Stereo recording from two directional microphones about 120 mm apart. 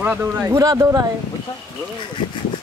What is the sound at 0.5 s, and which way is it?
Speech, 30° right (ahead or behind).